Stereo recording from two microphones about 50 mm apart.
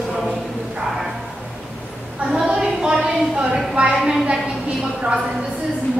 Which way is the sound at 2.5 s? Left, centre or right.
Centre.